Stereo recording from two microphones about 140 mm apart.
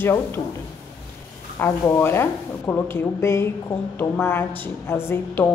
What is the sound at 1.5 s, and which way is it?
A woman's voice, 15° left (ahead or behind).